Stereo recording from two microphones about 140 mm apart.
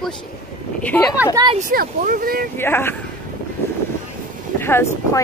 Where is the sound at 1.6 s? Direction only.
85° right.